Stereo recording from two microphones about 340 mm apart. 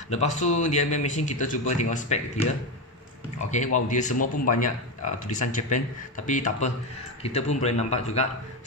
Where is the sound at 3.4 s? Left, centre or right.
Left.